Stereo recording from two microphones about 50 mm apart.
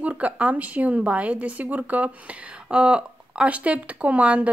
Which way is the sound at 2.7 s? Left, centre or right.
Right.